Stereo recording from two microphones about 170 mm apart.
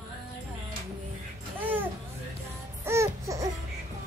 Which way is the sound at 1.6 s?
10° right (ahead or behind).